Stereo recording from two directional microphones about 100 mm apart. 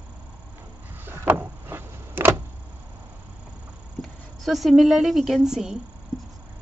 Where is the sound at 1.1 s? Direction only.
20° right (ahead or behind).